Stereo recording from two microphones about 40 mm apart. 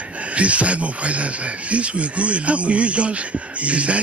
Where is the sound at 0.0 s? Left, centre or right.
Right.